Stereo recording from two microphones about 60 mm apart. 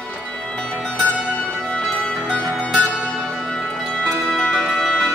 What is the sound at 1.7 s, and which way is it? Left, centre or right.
Music, centre.